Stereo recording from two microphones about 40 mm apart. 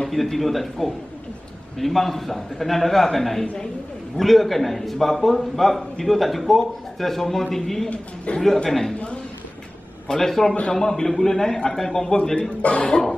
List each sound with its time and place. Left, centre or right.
0.1 s a man's voice: centre
8.3 s speech: left
8.6 s a man's voice: centre
10.0 s a man's voice: centre
12.4 s speech: left